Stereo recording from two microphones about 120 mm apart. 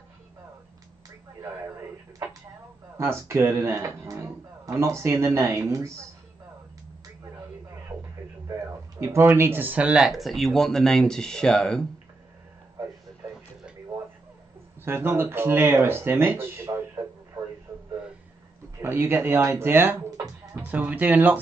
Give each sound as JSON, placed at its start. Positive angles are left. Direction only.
{"t": 1.4, "sound": "a sound", "side_deg": -25}
{"t": 3.0, "sound": "speech", "side_deg": -25}
{"t": 8.5, "sound": "speech", "side_deg": -25}
{"t": 14.9, "sound": "speech", "side_deg": -20}
{"t": 18.8, "sound": "speech", "side_deg": -20}